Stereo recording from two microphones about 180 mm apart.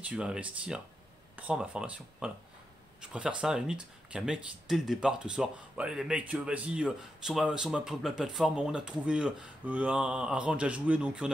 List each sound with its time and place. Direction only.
0.0 s speech: 5° right (ahead or behind)